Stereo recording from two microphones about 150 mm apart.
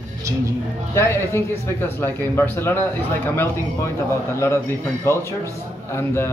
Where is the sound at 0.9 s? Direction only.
15° left (ahead or behind).